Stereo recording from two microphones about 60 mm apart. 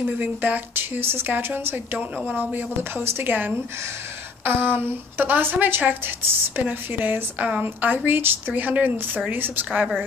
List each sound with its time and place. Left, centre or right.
0.2 s speech: right